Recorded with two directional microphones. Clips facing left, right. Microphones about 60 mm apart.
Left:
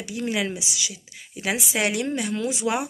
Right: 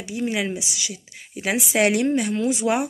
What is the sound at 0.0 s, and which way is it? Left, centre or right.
Speech, right.